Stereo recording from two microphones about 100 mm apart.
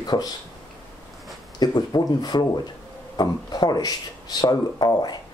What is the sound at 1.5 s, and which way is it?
Speech, 40° left (ahead or behind).